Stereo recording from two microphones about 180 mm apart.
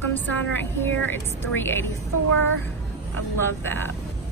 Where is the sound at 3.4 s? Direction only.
10° left (ahead or behind).